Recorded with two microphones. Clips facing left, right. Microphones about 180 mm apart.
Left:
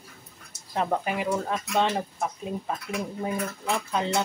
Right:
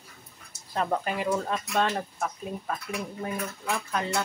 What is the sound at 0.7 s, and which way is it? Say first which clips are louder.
Speech: left 1 dB; 10° left (ahead or behind).